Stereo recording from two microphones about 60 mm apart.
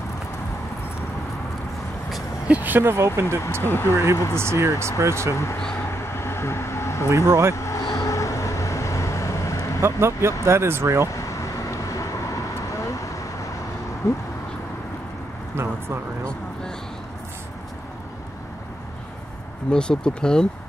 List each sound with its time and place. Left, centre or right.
2.4 s speech: right
2.9 s speech: right
3.6 s speech: left
4.4 s speech: right
5.3 s speech: left
6.1 s vehicle: left
7.2 s speech: right
7.5 s vehicle: left
9.8 s speech: right
11.1 s vehicle: left
15.5 s a sound: right
19.7 s speech: centre